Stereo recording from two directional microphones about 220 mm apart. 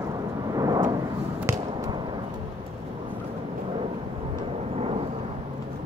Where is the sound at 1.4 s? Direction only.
15° right (ahead or behind).